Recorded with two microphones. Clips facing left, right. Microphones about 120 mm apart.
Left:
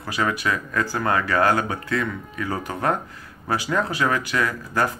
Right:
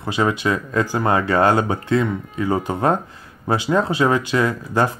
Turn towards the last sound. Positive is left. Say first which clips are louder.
# right 4 dB
turn(degrees=-25)  # may be behind; listen again after turning